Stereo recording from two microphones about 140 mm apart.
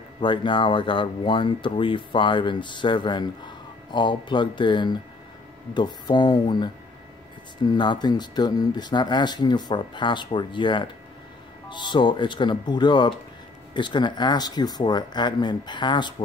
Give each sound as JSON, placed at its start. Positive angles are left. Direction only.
{"t": 0.2, "sound": "speech", "side_deg": 35}